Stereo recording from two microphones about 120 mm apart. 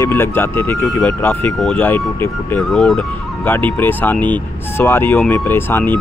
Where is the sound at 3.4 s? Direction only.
15° left (ahead or behind).